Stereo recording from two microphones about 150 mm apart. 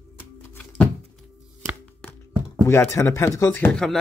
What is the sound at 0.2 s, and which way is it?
Music, 10° left (ahead or behind).